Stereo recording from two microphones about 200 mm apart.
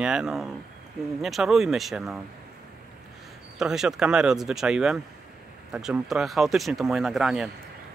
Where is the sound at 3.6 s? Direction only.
5° right (ahead or behind).